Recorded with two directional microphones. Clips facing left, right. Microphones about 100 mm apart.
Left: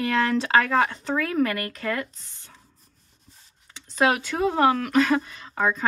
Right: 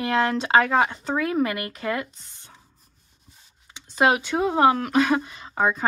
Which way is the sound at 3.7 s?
15° right (ahead or behind).